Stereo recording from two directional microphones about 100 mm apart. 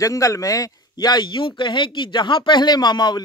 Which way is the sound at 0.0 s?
30° left (ahead or behind).